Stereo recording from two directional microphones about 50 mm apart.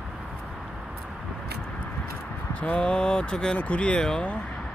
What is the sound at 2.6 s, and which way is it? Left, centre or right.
Speech, left.